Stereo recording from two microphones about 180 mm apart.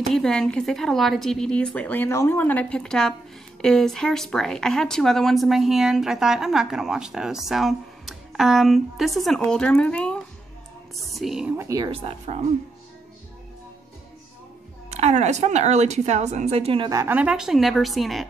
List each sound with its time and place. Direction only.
0.1 s speech: 5° left (ahead or behind)
11.5 s speech: 15° right (ahead or behind)
11.9 s a woman's voice: 35° right (ahead or behind)
14.9 s a woman's voice: 35° right (ahead or behind)
17.0 s speech: 10° right (ahead or behind)